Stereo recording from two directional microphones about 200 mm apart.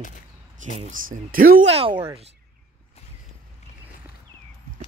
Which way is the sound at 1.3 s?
45° right (ahead or behind).